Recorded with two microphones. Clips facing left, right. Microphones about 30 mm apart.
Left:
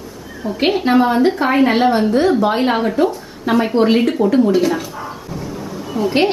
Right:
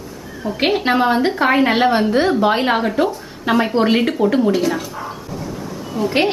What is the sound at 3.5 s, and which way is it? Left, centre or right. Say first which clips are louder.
Speech: left 1 dB; centre.